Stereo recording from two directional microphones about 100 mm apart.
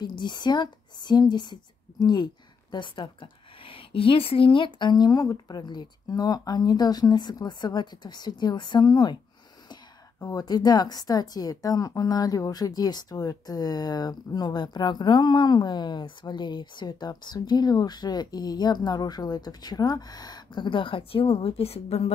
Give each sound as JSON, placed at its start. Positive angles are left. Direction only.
{"t": 0.0, "sound": "a woman's voice", "side_deg": 50}
{"t": 10.2, "sound": "a woman's voice", "side_deg": 40}